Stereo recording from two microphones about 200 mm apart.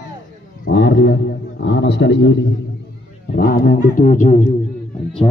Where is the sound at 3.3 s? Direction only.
50° left (ahead or behind).